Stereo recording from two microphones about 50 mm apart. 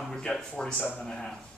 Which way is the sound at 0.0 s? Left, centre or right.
Centre.